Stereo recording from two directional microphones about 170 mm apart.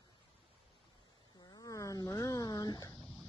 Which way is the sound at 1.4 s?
25° left (ahead or behind).